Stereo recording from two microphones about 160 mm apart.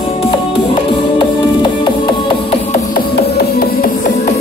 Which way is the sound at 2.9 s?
80° left.